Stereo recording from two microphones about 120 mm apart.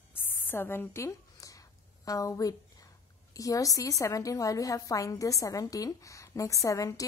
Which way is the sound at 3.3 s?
30° left (ahead or behind).